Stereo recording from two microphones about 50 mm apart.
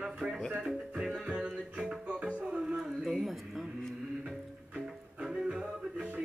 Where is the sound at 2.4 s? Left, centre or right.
Centre.